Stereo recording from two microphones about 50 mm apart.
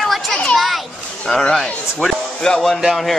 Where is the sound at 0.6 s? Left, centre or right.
Centre.